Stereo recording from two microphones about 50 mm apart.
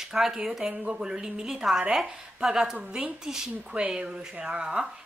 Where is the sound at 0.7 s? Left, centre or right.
Right.